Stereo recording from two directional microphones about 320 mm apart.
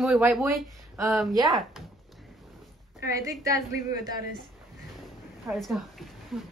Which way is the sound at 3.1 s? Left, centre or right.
Centre.